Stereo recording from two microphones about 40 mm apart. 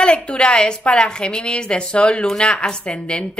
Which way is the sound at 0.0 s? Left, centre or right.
Left.